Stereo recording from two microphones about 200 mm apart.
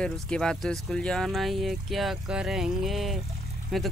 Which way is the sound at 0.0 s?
5° left (ahead or behind).